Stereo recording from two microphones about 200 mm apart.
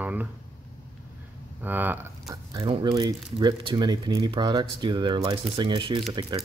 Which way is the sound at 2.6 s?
30° right (ahead or behind).